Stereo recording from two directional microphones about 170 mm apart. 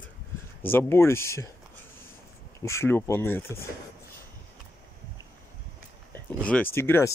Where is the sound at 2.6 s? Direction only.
15° left (ahead or behind).